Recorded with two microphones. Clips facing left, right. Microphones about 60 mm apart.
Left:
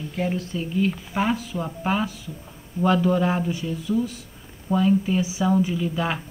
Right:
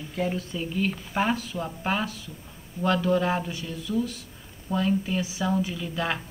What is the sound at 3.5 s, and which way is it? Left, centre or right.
Speech, left.